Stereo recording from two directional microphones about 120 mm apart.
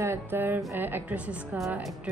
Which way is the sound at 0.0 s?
20° right (ahead or behind).